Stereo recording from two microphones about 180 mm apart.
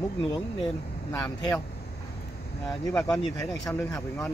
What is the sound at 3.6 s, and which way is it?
Speech, 20° left (ahead or behind).